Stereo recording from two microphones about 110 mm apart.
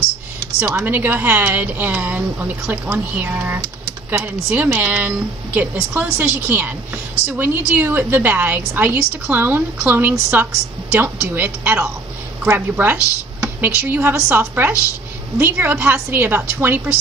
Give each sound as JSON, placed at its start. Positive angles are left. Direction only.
{"t": 0.7, "sound": "speech", "side_deg": -15}